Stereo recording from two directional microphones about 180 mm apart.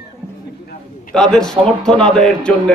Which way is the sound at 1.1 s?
5° left (ahead or behind).